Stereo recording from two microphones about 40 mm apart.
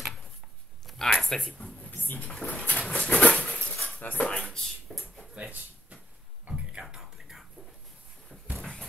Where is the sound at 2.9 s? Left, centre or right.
Left.